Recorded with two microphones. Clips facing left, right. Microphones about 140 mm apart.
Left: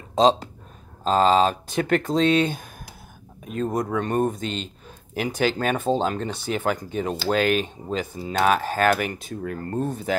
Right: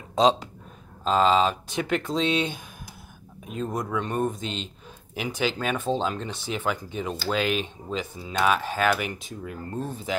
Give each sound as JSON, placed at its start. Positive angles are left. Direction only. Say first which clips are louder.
{"t": 0.1, "sound": "speech", "louder": "left 2 dB", "side_deg": 35}